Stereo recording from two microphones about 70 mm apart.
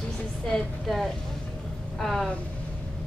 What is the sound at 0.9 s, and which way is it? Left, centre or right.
A woman's voice, centre.